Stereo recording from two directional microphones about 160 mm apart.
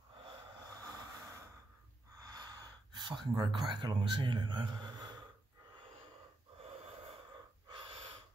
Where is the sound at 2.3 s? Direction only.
25° right (ahead or behind).